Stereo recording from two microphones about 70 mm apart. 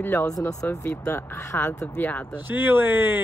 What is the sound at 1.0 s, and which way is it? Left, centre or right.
Speech, left.